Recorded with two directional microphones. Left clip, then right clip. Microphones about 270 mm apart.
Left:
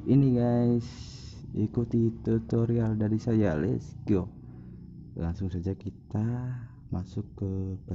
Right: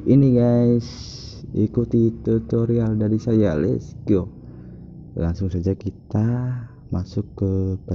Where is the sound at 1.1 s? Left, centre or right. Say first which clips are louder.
Right 10 dB; centre.